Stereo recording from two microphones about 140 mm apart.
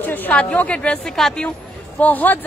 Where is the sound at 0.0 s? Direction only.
10° left (ahead or behind).